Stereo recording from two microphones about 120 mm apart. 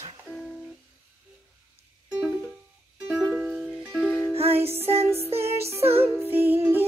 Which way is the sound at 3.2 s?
5° right (ahead or behind).